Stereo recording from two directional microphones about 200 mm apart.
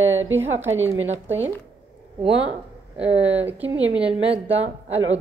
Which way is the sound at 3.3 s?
10° right (ahead or behind).